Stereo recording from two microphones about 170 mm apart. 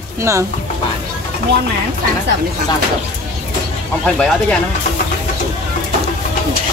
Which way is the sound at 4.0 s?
5° left (ahead or behind).